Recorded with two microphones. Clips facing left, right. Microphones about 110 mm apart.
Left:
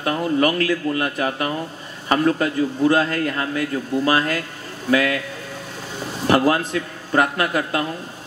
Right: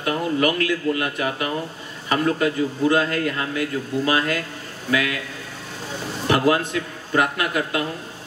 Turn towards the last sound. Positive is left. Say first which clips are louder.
# left 2 dB
turn(degrees=40)  # may be behind; listen again after turning